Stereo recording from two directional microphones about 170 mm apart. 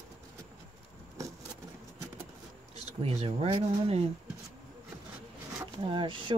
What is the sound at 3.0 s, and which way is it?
Speech, 35° right (ahead or behind).